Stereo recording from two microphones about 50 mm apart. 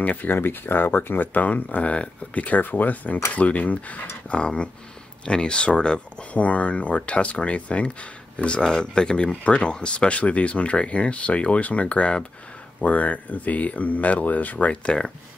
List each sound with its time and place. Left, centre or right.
0.0 s speech: left
4.3 s speech: left